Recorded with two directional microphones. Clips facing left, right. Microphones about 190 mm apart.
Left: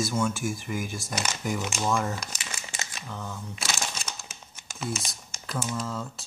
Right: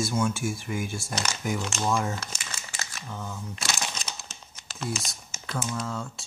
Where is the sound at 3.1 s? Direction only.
5° right (ahead or behind).